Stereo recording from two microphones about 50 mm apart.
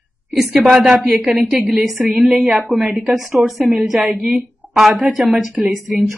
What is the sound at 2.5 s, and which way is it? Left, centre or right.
Speech, right.